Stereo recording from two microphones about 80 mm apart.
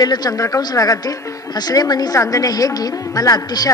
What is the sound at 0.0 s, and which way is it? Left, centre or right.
Speech, left.